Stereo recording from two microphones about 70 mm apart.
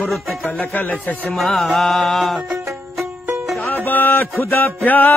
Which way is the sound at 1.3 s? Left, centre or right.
Centre.